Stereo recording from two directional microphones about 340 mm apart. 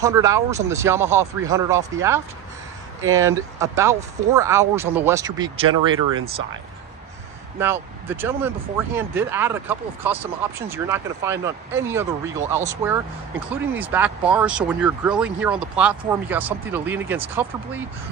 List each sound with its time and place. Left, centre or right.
0.0 s speech: centre
7.5 s speech: centre